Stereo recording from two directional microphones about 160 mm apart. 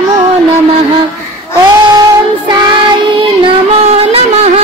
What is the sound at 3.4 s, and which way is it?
Child singing, 40° right (ahead or behind).